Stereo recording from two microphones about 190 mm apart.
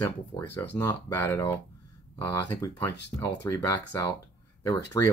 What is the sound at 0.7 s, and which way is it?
Speech, 15° left (ahead or behind).